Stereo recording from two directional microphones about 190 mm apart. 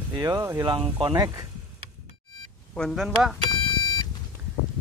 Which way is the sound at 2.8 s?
Centre (ahead or behind).